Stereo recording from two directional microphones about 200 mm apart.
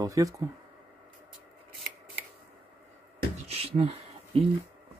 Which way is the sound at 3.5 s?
30° right (ahead or behind).